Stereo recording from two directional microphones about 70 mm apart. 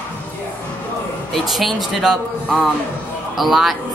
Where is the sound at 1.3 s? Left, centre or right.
Centre.